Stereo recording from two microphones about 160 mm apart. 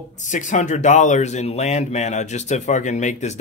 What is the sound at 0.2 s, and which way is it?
Speech, 50° left (ahead or behind).